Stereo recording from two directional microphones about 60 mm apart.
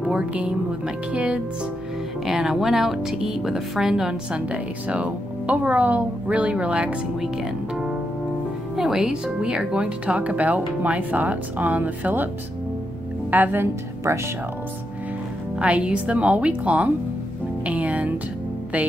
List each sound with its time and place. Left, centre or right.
0.0 s speech: right
8.7 s speech: centre; by 12.3 s right
13.3 s speech: right
14.1 s speech: right
15.6 s speech: centre
17.6 s music: right